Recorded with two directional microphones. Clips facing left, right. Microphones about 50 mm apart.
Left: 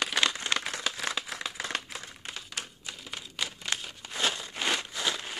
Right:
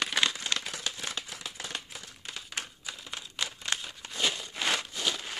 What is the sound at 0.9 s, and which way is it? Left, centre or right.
Crumpling, left.